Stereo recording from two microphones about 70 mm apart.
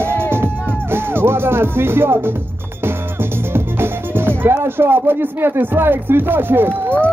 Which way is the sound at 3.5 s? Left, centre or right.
Right.